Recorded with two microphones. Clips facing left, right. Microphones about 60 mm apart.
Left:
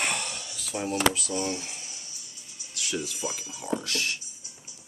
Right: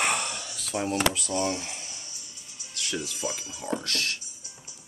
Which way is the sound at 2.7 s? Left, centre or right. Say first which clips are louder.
Even; centre.